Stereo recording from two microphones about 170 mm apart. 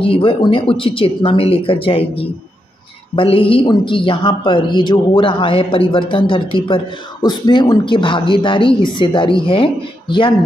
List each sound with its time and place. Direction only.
0.0 s speech: 30° left (ahead or behind)